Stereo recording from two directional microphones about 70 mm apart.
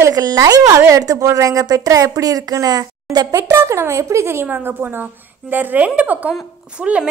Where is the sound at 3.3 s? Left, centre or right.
Right.